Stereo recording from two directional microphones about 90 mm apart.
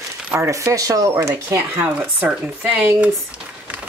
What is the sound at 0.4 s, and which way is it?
Speech, 35° right (ahead or behind).